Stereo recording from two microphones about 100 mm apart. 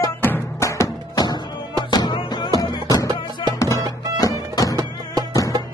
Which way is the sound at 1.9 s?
45° left (ahead or behind).